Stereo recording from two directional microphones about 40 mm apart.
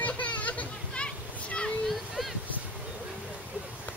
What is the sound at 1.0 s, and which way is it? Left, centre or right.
Children playing, left.